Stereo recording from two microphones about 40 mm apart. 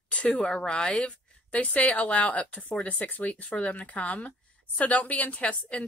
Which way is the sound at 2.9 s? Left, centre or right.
Left.